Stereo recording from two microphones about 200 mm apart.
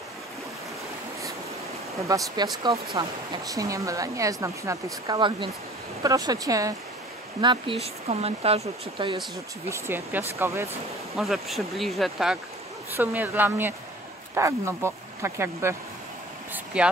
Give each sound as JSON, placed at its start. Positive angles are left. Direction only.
{"t": 2.0, "sound": "speech", "side_deg": -15}
{"t": 7.4, "sound": "speech", "side_deg": -25}
{"t": 9.7, "sound": "speech", "side_deg": -10}
{"t": 11.1, "sound": "speech", "side_deg": 0}
{"t": 16.5, "sound": "vehicle", "side_deg": -5}